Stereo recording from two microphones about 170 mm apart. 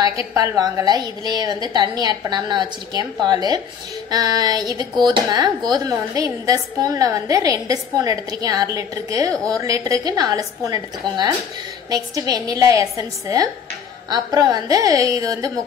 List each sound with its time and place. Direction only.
0.3 s a woman's voice: 20° right (ahead or behind)
9.3 s a woman's voice: 5° left (ahead or behind)
9.6 s a woman's voice: 20° right (ahead or behind)